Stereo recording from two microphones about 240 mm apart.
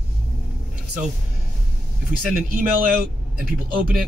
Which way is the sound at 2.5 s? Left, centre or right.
Right.